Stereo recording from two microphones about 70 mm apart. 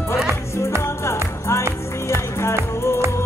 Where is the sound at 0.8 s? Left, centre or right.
Left.